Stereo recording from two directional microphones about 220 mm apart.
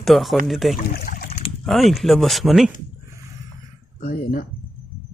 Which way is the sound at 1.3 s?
30° left (ahead or behind).